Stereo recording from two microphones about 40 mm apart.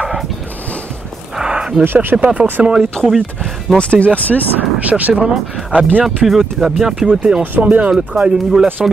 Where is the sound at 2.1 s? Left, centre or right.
Right.